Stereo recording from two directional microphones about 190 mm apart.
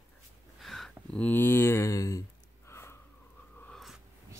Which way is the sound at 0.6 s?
Centre (ahead or behind).